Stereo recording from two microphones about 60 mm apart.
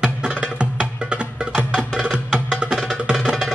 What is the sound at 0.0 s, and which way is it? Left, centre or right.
Music, centre.